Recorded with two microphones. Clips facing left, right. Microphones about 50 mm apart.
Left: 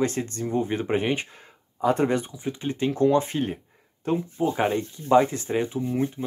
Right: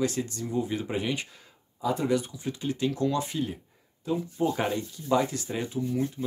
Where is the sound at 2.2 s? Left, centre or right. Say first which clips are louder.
Left 2 dB; left.